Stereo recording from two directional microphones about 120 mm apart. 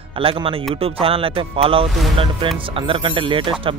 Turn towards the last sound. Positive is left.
turn(degrees=-45)  # may be behind; listen again after turning